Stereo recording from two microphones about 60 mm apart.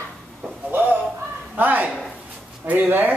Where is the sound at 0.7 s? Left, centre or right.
Right.